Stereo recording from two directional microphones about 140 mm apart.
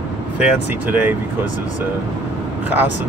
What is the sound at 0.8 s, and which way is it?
Speech, 15° right (ahead or behind).